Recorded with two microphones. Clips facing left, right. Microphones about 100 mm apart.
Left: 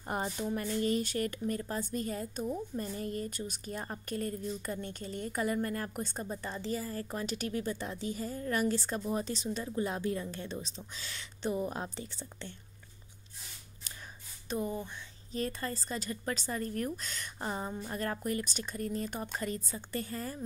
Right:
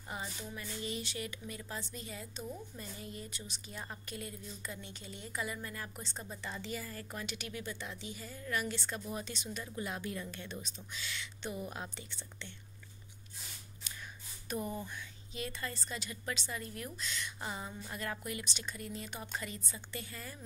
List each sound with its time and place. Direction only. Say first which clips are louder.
0.0 s speech: left 9 dB; 50° left (ahead or behind)
6.3 s speech: left 4 dB; 35° left (ahead or behind)
14.5 s speech: left 4 dB; 20° left (ahead or behind)
15.3 s speech: left 6 dB; 40° left (ahead or behind)